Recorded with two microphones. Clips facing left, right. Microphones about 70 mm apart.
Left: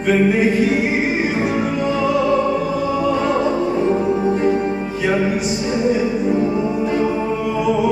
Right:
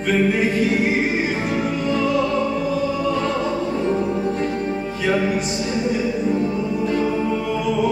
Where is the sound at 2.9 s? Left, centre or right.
Centre.